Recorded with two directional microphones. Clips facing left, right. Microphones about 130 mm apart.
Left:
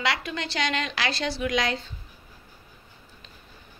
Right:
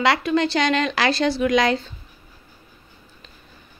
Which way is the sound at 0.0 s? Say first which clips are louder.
Right 10 dB; 40° right (ahead or behind).